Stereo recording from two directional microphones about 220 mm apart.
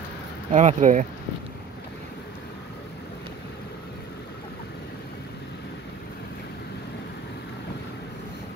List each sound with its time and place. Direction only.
0.5 s speech: 35° right (ahead or behind)